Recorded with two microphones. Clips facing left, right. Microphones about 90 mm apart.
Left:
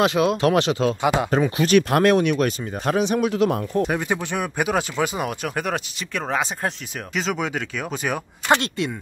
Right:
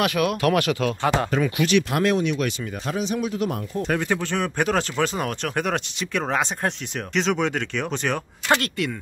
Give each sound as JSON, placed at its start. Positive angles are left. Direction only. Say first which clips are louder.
{"t": 0.0, "sound": "speech", "louder": "left 3 dB", "side_deg": 25}
{"t": 1.0, "sound": "speech", "louder": "even", "side_deg": 10}
{"t": 1.3, "sound": "speech", "louder": "left 3 dB", "side_deg": 35}
{"t": 3.8, "sound": "speech", "louder": "even", "side_deg": 10}
{"t": 8.5, "sound": "speech", "louder": "left 2 dB", "side_deg": 20}